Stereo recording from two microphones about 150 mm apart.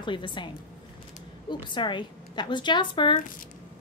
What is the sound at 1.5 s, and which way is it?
A woman's voice, 30° left (ahead or behind).